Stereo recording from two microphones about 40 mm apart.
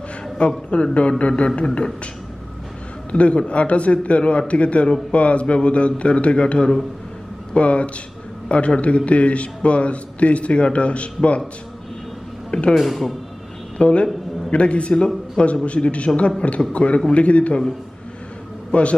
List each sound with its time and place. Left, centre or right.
0.4 s speech: left
3.1 s a man's voice: left
12.4 s speech: left
12.7 s speech: centre
13.7 s a man's voice: left
18.7 s a man's voice: left